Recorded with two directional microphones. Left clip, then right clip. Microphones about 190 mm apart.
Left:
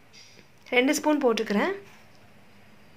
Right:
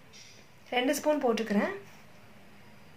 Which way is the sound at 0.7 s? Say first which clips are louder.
Left 5 dB; 40° left (ahead or behind).